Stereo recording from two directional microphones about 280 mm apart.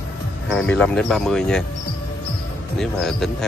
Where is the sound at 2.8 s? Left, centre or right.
Centre.